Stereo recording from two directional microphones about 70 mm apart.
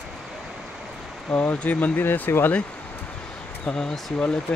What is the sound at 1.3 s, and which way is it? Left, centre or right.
Speech, left.